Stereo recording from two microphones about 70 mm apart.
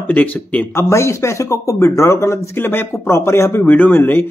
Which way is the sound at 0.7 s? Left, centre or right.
Left.